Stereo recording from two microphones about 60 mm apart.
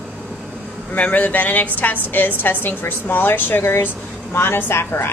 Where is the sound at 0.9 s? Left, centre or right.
Left.